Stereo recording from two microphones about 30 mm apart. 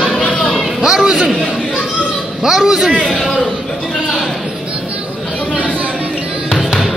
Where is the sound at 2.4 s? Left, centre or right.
Centre.